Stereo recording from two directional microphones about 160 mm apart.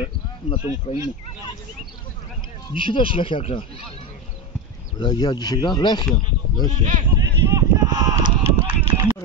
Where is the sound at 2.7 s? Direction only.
30° left (ahead or behind).